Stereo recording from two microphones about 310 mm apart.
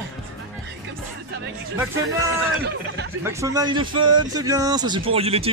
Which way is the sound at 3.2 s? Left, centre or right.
Centre.